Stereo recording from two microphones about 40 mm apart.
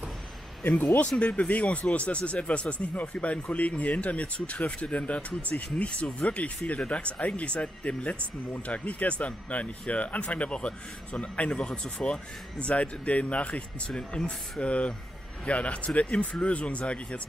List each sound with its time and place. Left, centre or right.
1.2 s speech: left
13.8 s speech: left